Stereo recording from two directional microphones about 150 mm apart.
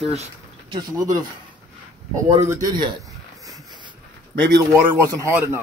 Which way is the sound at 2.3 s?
20° right (ahead or behind).